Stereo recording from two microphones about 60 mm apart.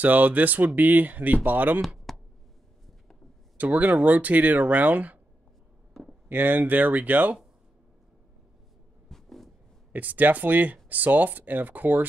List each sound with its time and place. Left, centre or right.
0.0 s speech: right
2.1 s music: centre
3.5 s speech: right
6.2 s speech: right
9.1 s a sound: centre
9.9 s speech: right